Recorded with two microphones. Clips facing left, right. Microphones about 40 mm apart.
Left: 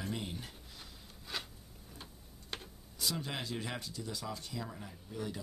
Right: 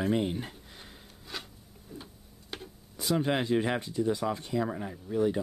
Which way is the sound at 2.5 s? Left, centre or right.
Centre.